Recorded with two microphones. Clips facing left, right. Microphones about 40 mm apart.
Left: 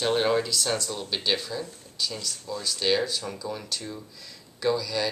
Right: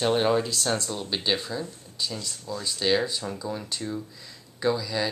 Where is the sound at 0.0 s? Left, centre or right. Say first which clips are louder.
Right 1 dB; centre.